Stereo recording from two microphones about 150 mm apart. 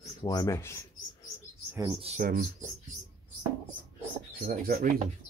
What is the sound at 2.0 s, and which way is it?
Speech, 50° right (ahead or behind).